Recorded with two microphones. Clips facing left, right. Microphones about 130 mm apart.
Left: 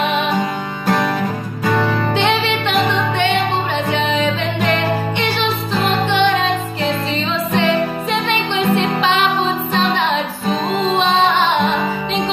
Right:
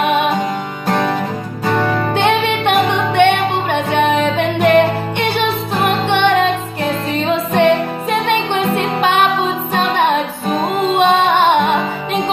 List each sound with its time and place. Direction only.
0.0 s music: 55° right (ahead or behind)
2.1 s music: 50° right (ahead or behind)